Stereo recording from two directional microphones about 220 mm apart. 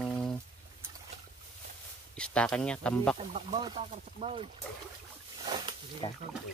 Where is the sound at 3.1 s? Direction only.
30° right (ahead or behind).